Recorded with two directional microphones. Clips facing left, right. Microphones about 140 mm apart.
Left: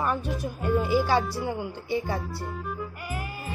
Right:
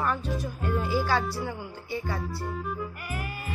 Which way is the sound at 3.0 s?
25° left (ahead or behind).